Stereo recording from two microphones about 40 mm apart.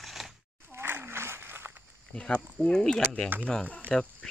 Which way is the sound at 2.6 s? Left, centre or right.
Centre.